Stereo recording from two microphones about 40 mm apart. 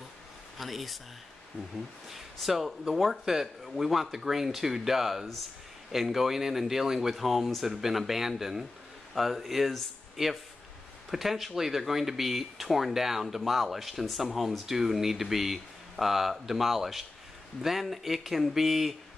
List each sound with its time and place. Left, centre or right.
0.6 s speech: centre
2.9 s speech: centre